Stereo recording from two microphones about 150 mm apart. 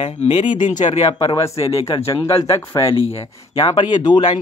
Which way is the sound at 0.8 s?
30° left (ahead or behind).